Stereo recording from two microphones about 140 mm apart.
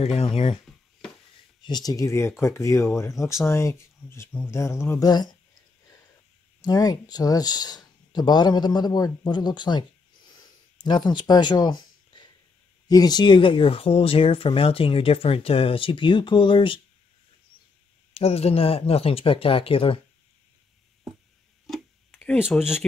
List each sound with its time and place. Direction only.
0.0 s speech: 45° left (ahead or behind)
1.6 s speech: 30° left (ahead or behind)
6.6 s speech: 25° left (ahead or behind)
18.1 s speech: 45° left (ahead or behind)
21.6 s a sound: 5° left (ahead or behind)
22.4 s speech: 5° right (ahead or behind)